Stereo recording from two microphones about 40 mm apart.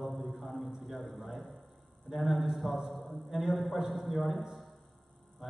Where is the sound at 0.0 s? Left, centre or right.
Centre.